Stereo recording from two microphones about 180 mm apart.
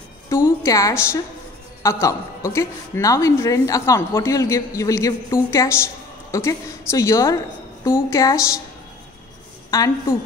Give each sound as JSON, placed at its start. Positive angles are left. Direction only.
{"t": 0.3, "sound": "a woman's voice", "side_deg": 15}
{"t": 9.7, "sound": "a woman's voice", "side_deg": 20}